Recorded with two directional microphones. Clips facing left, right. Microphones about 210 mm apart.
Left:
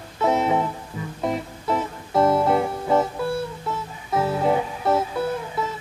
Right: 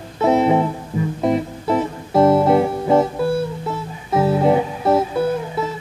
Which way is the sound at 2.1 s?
25° right (ahead or behind).